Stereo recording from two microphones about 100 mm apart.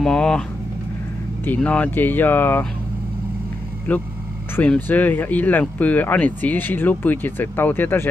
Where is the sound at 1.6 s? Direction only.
15° left (ahead or behind).